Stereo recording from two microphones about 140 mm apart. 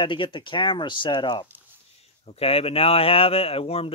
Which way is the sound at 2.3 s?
45° left (ahead or behind).